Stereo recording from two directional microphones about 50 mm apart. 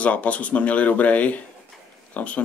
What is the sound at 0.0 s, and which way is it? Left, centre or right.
Speech, left.